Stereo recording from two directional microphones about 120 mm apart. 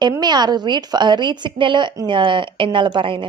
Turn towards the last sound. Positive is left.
turn(degrees=-45)  # may be behind; listen again after turning